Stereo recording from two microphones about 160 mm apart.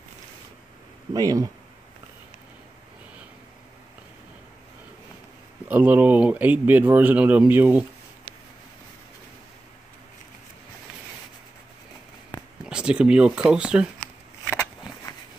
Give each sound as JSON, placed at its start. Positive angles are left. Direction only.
{"t": 1.1, "sound": "speech", "side_deg": -20}
{"t": 5.7, "sound": "speech", "side_deg": -10}
{"t": 8.3, "sound": "a sound", "side_deg": -40}
{"t": 12.6, "sound": "speech", "side_deg": -5}